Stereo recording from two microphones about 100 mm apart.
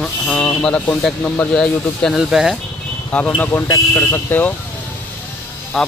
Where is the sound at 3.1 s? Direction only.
15° left (ahead or behind).